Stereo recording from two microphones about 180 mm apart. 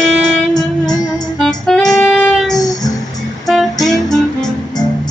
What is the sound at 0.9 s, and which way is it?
Music, 20° left (ahead or behind).